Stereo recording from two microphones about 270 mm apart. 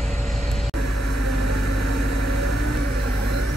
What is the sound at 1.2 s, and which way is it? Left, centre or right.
Vehicle, right.